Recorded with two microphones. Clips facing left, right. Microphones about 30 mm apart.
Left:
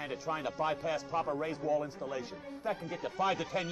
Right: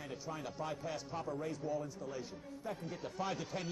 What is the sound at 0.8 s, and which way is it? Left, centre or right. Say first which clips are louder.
Speech: left 8 dB; centre.